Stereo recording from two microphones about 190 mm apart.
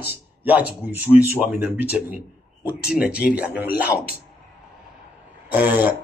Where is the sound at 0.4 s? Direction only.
10° right (ahead or behind).